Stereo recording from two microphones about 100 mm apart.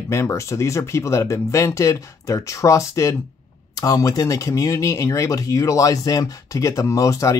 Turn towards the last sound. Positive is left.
turn(degrees=35)  # may be behind; listen again after turning